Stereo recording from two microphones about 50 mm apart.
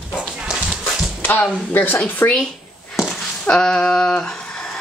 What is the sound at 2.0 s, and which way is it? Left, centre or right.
Speech, left.